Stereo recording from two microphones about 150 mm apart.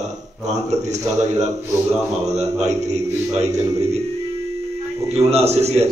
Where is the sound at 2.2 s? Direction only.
45° right (ahead or behind).